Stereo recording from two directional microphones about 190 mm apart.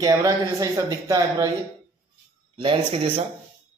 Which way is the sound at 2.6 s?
30° right (ahead or behind).